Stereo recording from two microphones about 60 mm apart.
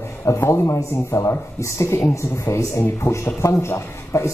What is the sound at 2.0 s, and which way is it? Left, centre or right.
Speech, left.